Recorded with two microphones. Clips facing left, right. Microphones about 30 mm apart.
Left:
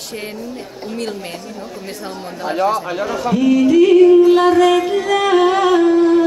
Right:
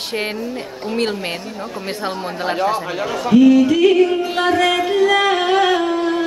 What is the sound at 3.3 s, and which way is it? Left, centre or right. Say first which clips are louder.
Music: right 2 dB; centre.